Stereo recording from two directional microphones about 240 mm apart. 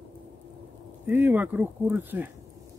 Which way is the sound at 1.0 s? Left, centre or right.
Centre.